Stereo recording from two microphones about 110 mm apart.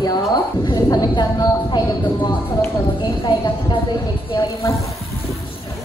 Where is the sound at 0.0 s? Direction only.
40° left (ahead or behind).